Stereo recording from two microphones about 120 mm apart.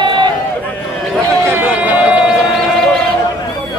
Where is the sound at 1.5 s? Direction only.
15° right (ahead or behind).